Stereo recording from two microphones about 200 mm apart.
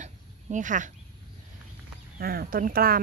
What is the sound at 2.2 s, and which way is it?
Speech, 50° right (ahead or behind).